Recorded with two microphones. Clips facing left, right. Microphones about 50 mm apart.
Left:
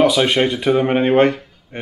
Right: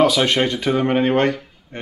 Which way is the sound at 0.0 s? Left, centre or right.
Centre.